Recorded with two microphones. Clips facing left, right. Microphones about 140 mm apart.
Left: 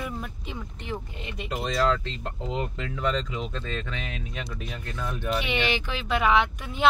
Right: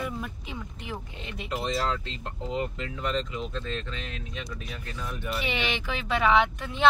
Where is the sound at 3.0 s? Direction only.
90° left.